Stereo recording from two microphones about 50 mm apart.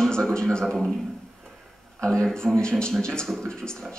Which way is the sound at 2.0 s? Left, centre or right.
Centre.